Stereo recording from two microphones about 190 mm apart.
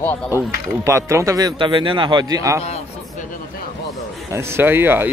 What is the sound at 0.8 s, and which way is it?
A man's voice, 15° right (ahead or behind).